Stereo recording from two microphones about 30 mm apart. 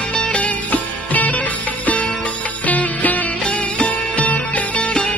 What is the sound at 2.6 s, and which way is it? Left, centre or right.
Music, left.